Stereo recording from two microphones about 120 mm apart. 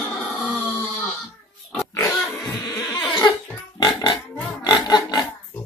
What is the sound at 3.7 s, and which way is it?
Pig, 35° left (ahead or behind).